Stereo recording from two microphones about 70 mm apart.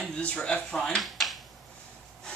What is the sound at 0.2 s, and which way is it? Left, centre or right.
Speech, centre.